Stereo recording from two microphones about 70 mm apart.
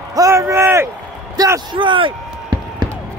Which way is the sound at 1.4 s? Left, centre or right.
Right.